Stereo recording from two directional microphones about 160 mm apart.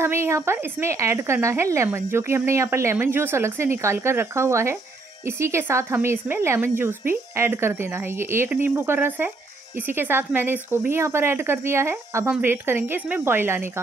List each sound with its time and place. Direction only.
0.0 s a woman's voice: 15° right (ahead or behind)